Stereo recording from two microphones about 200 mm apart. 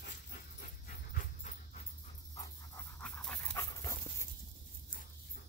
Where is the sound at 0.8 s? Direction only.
45° left (ahead or behind).